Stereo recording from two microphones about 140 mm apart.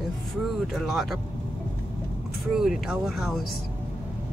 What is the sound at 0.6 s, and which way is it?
Speech, centre (ahead or behind).